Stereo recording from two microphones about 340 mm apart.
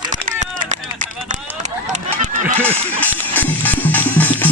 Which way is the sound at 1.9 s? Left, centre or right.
Right.